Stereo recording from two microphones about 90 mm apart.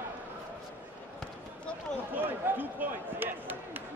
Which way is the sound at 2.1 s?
20° right (ahead or behind).